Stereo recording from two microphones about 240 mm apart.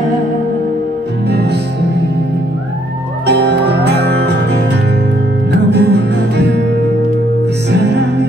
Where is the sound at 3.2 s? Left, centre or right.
Right.